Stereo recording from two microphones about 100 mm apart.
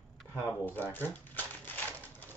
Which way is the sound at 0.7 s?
20° left (ahead or behind).